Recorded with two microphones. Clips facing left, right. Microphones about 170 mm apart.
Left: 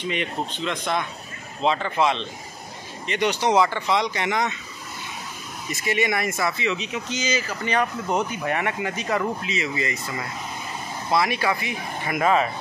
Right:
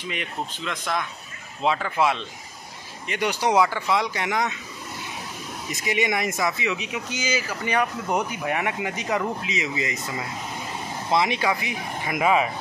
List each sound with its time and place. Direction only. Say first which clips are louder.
0.6 s speech: left 3 dB; centre (ahead or behind)
5.7 s speech: left 1 dB; 15° right (ahead or behind)